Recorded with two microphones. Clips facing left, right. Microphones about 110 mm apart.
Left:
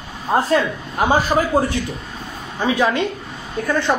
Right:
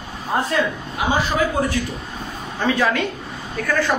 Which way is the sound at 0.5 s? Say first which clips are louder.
Left 3 dB; 45° left (ahead or behind).